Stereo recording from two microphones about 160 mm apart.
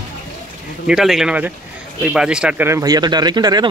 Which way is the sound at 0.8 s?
5° right (ahead or behind).